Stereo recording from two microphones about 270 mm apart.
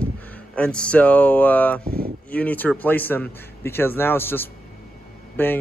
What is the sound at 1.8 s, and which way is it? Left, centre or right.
Speech, right.